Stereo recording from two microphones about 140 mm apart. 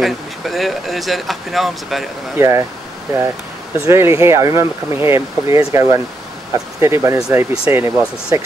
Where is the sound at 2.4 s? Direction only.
20° right (ahead or behind).